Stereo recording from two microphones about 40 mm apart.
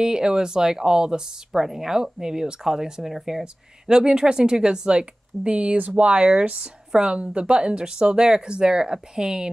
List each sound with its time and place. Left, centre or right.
0.0 s speech: centre
3.0 s speech: centre